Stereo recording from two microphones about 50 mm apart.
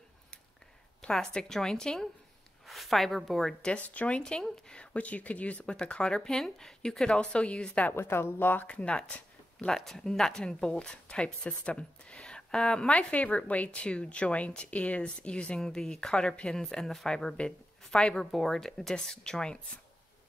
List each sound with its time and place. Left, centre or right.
1.1 s speech: centre
2.6 s speech: centre
3.8 s speech: left
4.2 s speech: centre
4.9 s speech: left
7.9 s a woman's voice: left
8.6 s speech: left
9.7 s speech: centre
12.2 s a sound: centre
12.9 s speech: left